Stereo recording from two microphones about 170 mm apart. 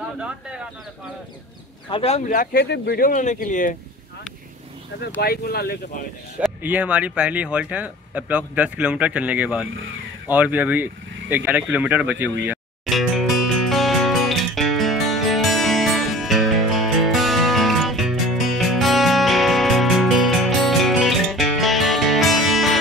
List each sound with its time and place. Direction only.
1.9 s speech: 35° left (ahead or behind)
2.3 s speech: 60° left (ahead or behind)
5.0 s speech: 65° left (ahead or behind)
6.6 s speech: 10° right (ahead or behind)
12.9 s music: centre (ahead or behind)